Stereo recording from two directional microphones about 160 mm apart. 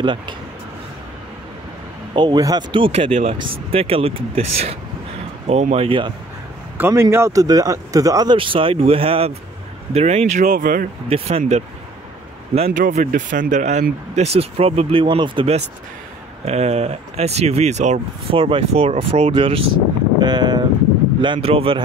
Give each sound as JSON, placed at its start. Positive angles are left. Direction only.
{"t": 0.0, "sound": "speech", "side_deg": -30}
{"t": 2.1, "sound": "speech", "side_deg": -25}
{"t": 6.8, "sound": "speech", "side_deg": -15}
{"t": 10.4, "sound": "speech", "side_deg": -65}
{"t": 11.1, "sound": "speech", "side_deg": -40}
{"t": 12.8, "sound": "speech", "side_deg": -55}
{"t": 18.4, "sound": "speech", "side_deg": -35}